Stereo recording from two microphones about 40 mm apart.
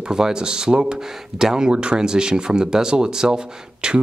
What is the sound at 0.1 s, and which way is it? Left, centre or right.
Speech, centre.